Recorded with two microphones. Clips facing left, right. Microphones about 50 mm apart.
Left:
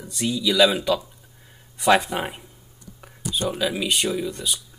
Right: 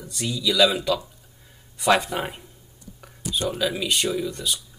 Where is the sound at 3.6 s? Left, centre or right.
Centre.